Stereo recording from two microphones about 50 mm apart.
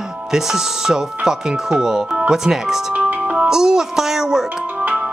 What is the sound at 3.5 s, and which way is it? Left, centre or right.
Speech, centre.